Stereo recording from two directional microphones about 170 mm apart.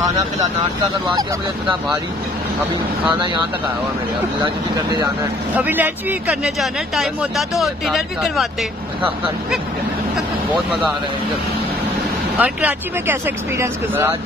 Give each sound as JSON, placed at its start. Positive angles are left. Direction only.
{"t": 3.1, "sound": "speech", "side_deg": -30}
{"t": 5.6, "sound": "speech", "side_deg": -10}
{"t": 12.4, "sound": "speech", "side_deg": -10}